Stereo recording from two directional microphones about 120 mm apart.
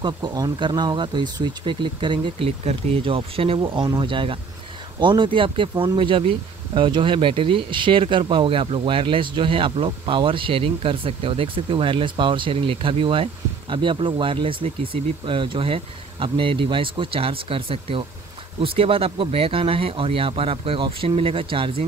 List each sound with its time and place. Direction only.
0.0 s speech: 35° right (ahead or behind)